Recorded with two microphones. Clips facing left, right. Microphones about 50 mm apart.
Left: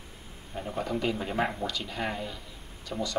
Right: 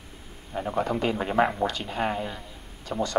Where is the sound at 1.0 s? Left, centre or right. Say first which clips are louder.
Right 6 dB; right.